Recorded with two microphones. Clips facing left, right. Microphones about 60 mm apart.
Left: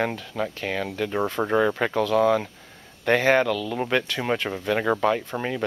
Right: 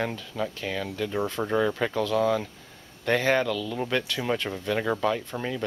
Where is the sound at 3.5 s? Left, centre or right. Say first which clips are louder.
Left 3 dB; left.